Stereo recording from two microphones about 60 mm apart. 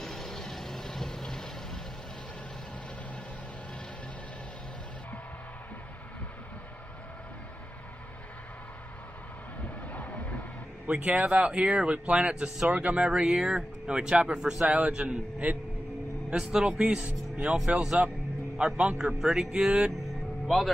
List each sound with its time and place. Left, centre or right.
0.0 s vehicle: centre
9.6 s vehicle: left
10.9 s speech: right
20.4 s speech: centre